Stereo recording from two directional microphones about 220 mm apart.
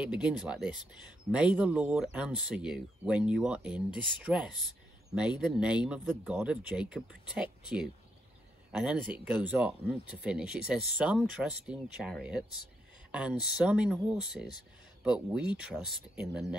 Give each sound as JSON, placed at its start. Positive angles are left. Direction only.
{"t": 0.0, "sound": "speech", "side_deg": -5}